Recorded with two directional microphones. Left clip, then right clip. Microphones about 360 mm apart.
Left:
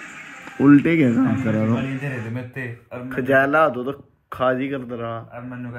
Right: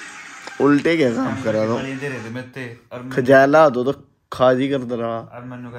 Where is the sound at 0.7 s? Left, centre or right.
Right.